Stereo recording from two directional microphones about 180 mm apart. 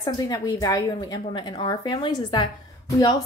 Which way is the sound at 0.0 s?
20° left (ahead or behind).